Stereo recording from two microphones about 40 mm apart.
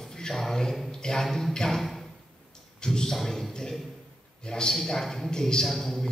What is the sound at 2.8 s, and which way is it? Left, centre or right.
Speech, centre.